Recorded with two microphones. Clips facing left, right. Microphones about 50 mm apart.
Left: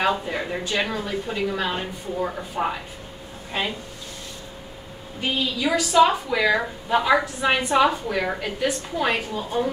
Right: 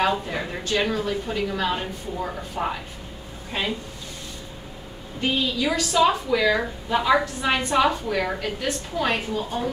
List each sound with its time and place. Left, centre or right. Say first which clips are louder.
0.1 s a woman's voice: left 1 dB; centre
5.2 s a woman's voice: right 1 dB; centre